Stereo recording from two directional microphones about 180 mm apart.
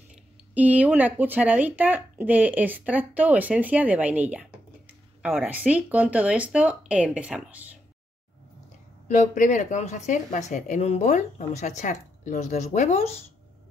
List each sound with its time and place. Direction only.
0.6 s speech: 10° right (ahead or behind)
9.0 s speech: 45° left (ahead or behind)